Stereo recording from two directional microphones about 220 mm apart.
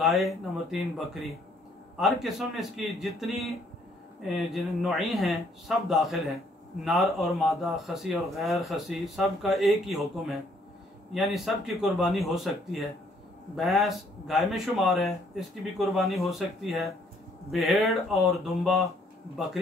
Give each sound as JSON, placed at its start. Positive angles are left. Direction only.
{"t": 0.0, "sound": "a man's voice", "side_deg": 0}
{"t": 13.6, "sound": "a man's voice", "side_deg": 0}